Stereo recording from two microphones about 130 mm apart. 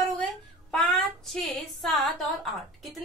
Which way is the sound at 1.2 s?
Centre (ahead or behind).